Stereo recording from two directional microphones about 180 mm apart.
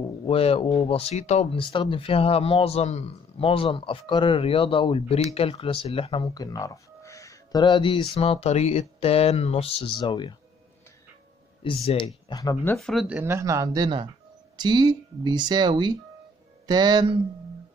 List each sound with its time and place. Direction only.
0.3 s speech: 30° left (ahead or behind)
11.6 s speech: 30° left (ahead or behind)
12.3 s speech: 20° left (ahead or behind)
12.7 s speech: centre (ahead or behind); by 17.2 s 20° right (ahead or behind)